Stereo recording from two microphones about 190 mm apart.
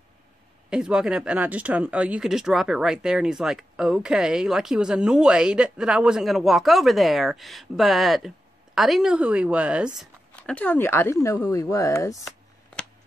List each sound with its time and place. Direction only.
0.7 s speech: 5° right (ahead or behind)
9.9 s speech: 5° left (ahead or behind)